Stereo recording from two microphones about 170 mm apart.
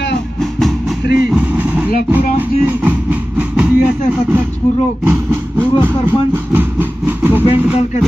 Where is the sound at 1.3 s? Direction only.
10° right (ahead or behind).